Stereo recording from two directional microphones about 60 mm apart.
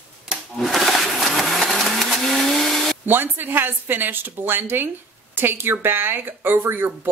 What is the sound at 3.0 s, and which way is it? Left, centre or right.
Speech, right.